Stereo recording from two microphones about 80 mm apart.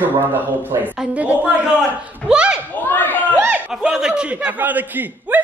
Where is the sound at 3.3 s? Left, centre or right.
Right.